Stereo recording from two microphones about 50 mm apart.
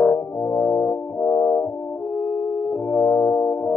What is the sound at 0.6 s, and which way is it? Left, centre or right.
Brass instrument, left.